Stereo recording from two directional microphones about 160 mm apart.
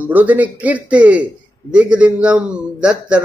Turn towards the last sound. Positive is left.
turn(degrees=-5)  # may be behind; listen again after turning